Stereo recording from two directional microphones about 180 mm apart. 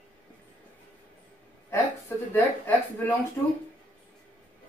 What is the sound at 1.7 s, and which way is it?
A woman's voice, 15° left (ahead or behind).